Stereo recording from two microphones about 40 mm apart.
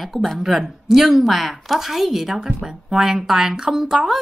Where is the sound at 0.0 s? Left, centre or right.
Centre.